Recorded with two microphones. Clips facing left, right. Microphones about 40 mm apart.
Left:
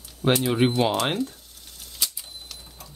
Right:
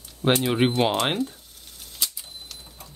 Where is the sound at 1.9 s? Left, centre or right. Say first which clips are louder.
Even; centre.